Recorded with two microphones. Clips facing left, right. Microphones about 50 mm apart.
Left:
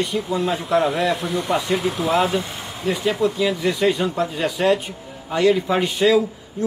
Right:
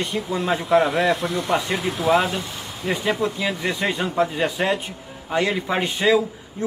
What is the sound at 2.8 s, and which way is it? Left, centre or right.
A man's voice, centre.